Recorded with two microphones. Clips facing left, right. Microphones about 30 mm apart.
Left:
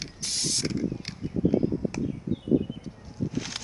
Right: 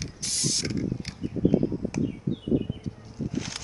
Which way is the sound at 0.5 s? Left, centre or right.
Centre.